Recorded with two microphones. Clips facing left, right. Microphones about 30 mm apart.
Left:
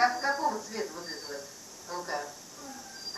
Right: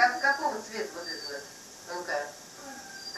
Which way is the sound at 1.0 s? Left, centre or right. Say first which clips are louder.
Right 2 dB; right.